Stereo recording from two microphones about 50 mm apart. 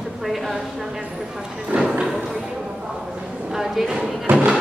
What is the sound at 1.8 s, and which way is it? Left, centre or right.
Speech, centre.